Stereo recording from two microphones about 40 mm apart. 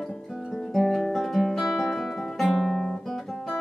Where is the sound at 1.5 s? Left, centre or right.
Centre.